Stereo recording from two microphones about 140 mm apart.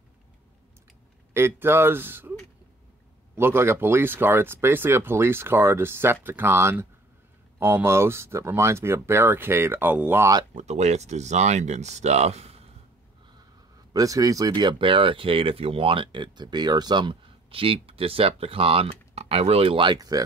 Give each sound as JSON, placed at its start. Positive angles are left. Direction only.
{"t": 1.3, "sound": "speech", "side_deg": -15}
{"t": 3.3, "sound": "speech", "side_deg": -15}
{"t": 10.5, "sound": "speech", "side_deg": -55}
{"t": 13.9, "sound": "speech", "side_deg": -25}